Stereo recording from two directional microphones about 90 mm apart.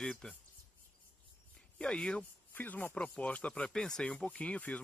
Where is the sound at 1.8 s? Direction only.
10° left (ahead or behind).